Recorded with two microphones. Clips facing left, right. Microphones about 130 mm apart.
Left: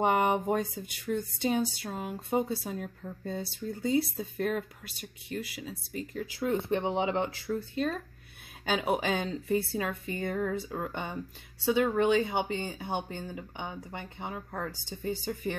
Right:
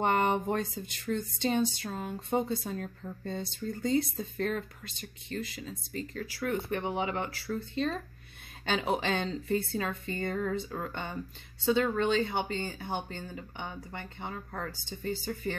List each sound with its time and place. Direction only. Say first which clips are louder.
0.0 s speech: left 1 dB; 10° left (ahead or behind)